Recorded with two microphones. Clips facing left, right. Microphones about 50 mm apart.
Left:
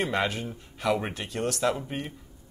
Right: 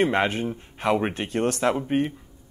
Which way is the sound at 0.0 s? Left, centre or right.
Right.